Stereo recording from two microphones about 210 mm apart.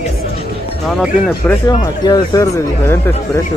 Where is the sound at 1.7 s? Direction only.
20° left (ahead or behind).